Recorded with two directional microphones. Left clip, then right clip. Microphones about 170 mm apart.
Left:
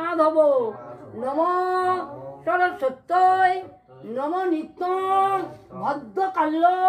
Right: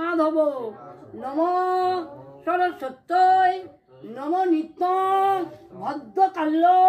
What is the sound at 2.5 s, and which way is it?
Speech, 25° left (ahead or behind).